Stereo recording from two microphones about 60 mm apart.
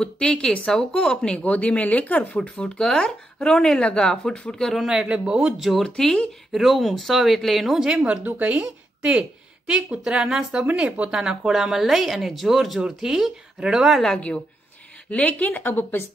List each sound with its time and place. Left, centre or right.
0.0 s speech: centre
4.7 s speech: centre
5.6 s speech: centre
5.9 s speech: centre
7.8 s speech: centre
8.2 s speech: right; by 14.0 s centre
15.0 s speech: left